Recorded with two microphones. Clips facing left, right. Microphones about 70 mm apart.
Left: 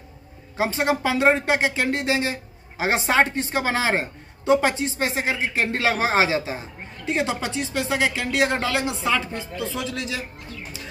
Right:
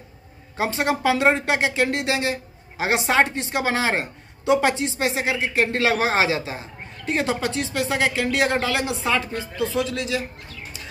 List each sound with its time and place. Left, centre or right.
0.6 s a woman's voice: left
7.1 s a woman's voice: right
7.3 s a woman's voice: left
8.9 s a woman's voice: right
9.6 s a woman's voice: left